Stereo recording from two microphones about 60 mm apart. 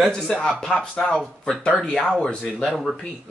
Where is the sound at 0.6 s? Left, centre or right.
Centre.